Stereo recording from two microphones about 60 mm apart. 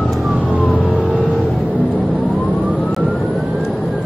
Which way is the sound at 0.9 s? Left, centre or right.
Right.